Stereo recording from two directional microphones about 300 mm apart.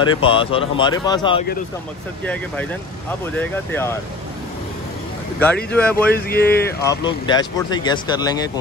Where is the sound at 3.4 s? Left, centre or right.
Centre.